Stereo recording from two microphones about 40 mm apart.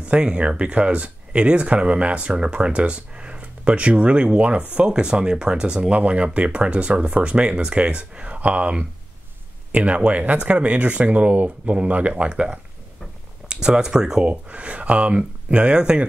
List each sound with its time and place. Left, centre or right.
0.0 s speech: right
4.8 s speech: right
13.5 s speech: centre
14.2 s speech: right